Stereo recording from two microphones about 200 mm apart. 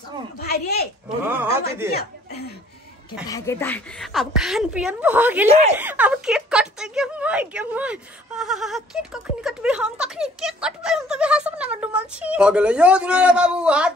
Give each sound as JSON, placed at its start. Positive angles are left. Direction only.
{"t": 0.4, "sound": "speech", "side_deg": 50}
{"t": 1.0, "sound": "speech", "side_deg": -10}
{"t": 1.9, "sound": "speech", "side_deg": 50}
{"t": 3.3, "sound": "a woman's voice", "side_deg": 15}
{"t": 5.5, "sound": "speech", "side_deg": -35}
{"t": 5.8, "sound": "a woman's voice", "side_deg": -10}